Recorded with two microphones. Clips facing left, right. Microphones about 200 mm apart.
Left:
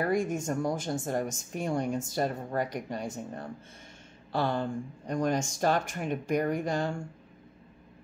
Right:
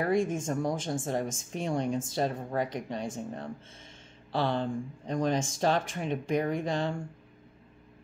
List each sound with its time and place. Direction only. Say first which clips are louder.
0.0 s speech: right 1 dB; centre (ahead or behind)